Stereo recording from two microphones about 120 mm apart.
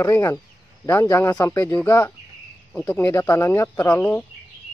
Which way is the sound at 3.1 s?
25° left (ahead or behind).